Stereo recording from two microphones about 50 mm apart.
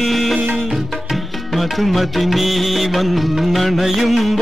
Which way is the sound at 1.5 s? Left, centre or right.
Centre.